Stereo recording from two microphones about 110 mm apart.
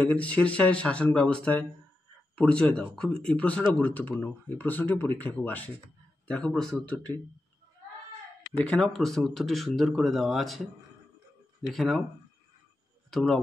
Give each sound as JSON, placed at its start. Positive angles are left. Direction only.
{"t": 0.0, "sound": "speech", "side_deg": 10}
{"t": 8.5, "sound": "speech", "side_deg": 10}
{"t": 13.1, "sound": "speech", "side_deg": 5}